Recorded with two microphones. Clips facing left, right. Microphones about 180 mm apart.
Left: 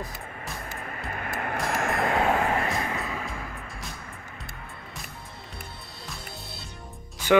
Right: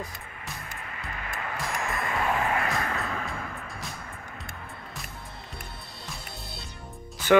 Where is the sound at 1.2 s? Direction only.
55° left (ahead or behind).